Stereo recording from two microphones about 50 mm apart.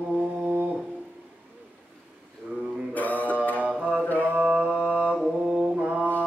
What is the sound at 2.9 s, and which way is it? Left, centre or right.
Mantra, left.